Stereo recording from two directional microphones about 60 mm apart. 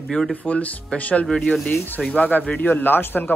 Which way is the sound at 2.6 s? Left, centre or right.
Left.